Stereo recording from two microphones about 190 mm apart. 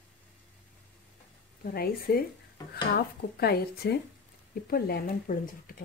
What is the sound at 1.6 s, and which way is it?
Speech, 50° left (ahead or behind).